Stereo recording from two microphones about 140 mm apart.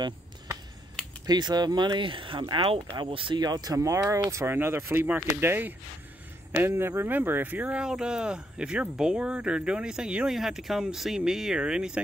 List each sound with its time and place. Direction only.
1.2 s speech: 30° right (ahead or behind); by 12.0 s 5° right (ahead or behind)